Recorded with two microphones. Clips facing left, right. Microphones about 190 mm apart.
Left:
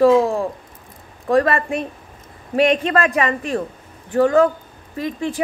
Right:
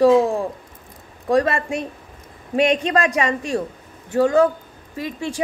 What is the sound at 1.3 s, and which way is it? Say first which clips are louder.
A woman's voice: left 2 dB; 15° right (ahead or behind).